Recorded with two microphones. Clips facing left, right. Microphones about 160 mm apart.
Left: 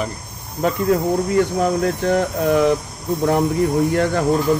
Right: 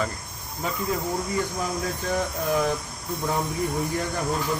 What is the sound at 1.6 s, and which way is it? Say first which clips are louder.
Speech: left 10 dB; 70° left (ahead or behind).